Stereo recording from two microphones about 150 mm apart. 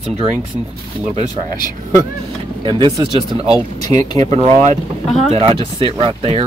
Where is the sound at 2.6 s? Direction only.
35° right (ahead or behind).